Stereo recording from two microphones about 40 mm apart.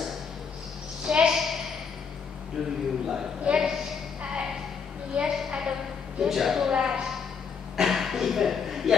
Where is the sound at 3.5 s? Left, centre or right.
Right.